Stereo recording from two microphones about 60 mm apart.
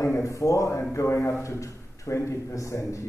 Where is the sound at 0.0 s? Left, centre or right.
Left.